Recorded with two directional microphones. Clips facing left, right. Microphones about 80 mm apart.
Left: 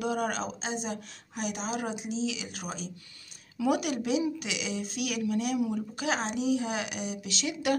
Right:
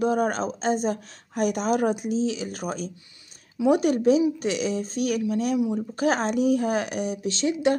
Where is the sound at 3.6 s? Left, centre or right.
Right.